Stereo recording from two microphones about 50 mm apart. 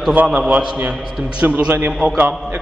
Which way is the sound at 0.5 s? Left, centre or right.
Centre.